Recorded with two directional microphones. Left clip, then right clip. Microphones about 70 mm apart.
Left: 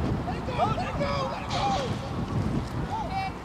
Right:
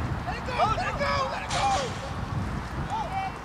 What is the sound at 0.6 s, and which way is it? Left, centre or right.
Vehicle, right.